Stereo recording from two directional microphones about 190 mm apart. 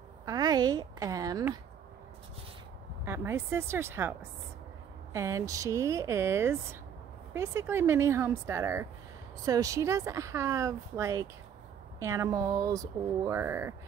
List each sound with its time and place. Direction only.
0.2 s a woman's voice: 20° right (ahead or behind)
3.1 s speech: 15° right (ahead or behind)